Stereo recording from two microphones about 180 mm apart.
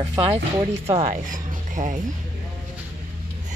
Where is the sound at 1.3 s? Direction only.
45° right (ahead or behind).